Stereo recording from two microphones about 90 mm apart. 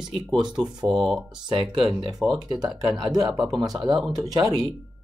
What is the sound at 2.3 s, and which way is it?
Speech, 50° right (ahead or behind).